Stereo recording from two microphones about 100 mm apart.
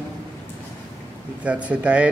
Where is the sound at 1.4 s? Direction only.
15° right (ahead or behind).